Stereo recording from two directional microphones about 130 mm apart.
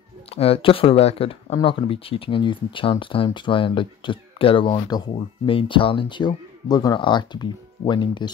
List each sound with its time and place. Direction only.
0.3 s speech: 50° left (ahead or behind); by 5.1 s 30° left (ahead or behind)
5.1 s speech: 45° left (ahead or behind)